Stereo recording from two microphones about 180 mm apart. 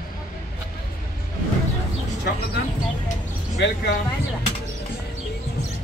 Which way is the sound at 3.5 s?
70° left (ahead or behind).